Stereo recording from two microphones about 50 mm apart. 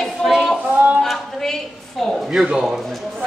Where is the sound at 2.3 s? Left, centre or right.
Centre.